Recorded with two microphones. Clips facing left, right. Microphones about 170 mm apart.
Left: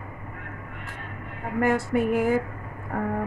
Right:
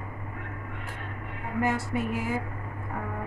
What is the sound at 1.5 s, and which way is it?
A woman's voice, 50° left (ahead or behind).